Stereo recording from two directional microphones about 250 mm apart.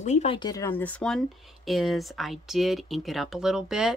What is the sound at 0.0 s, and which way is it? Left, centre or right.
Speech, left.